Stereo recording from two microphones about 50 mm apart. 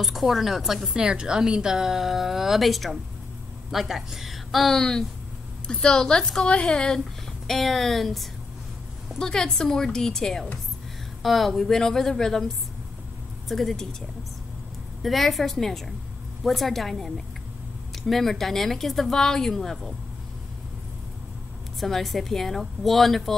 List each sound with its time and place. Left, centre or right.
0.0 s a woman's voice: centre
7.4 s a woman's voice: centre
13.5 s speech: centre
15.0 s speech: centre
21.7 s speech: centre